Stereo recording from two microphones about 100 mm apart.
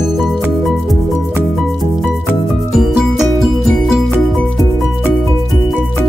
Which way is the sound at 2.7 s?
5° right (ahead or behind).